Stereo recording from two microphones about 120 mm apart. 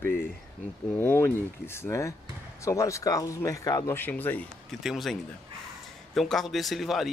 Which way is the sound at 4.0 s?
15° left (ahead or behind).